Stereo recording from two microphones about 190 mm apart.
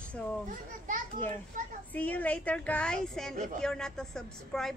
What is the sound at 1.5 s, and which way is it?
Speech, 45° right (ahead or behind).